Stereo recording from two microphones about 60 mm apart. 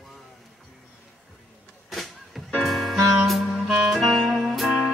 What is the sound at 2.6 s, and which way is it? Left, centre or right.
Music, centre.